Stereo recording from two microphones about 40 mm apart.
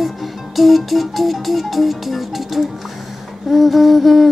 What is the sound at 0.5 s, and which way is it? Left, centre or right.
Humming, centre.